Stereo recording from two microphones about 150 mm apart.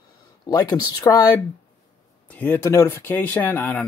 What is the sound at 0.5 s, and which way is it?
Speech, 25° left (ahead or behind).